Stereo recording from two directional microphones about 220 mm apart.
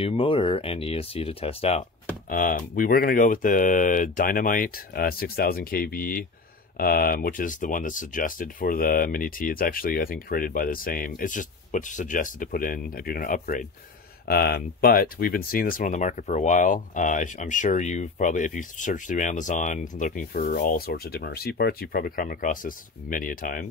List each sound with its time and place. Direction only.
0.0 s speech: 25° left (ahead or behind)
2.2 s speech: 40° left (ahead or behind)